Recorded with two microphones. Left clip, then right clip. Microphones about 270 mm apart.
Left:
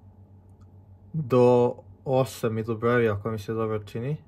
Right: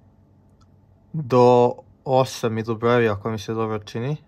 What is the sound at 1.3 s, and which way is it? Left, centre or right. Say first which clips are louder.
Speech: right 5 dB; centre.